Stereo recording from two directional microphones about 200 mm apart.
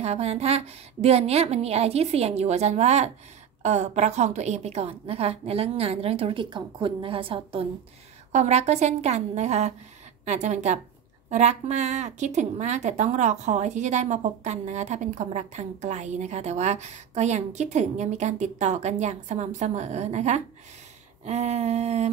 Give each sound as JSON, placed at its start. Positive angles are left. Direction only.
{"t": 0.0, "sound": "a woman's voice", "side_deg": -30}